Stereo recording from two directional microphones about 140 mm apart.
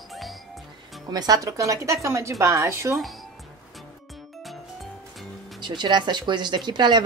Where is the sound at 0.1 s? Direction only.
Centre (ahead or behind).